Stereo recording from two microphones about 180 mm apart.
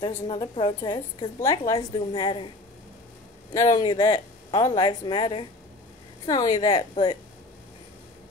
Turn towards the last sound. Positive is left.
turn(degrees=25)  # may be behind; listen again after turning